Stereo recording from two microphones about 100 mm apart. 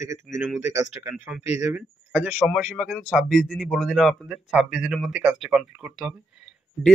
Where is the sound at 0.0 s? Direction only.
30° right (ahead or behind).